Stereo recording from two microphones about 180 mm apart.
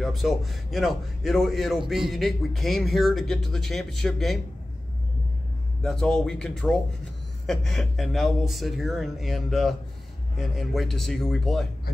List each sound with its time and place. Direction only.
0.0 s speech: centre (ahead or behind)
5.8 s speech: 5° left (ahead or behind)